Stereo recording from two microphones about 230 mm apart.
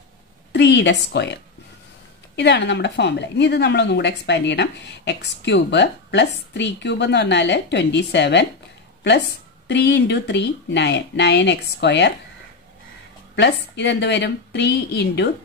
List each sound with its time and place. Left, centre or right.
0.5 s a woman's voice: left
9.7 s a woman's voice: left
13.4 s a woman's voice: left